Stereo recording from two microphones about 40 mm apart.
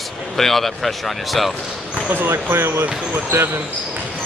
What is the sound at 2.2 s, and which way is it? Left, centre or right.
Speech, right.